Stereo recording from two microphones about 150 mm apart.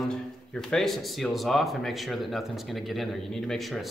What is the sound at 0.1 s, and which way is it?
Speech, 5° left (ahead or behind).